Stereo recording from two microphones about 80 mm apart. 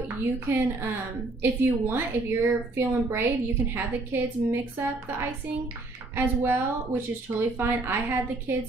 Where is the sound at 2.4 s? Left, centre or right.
Right.